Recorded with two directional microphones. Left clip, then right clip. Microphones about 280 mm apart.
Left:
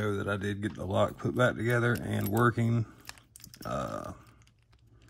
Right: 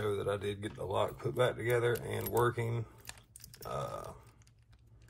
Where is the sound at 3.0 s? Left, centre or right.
Centre.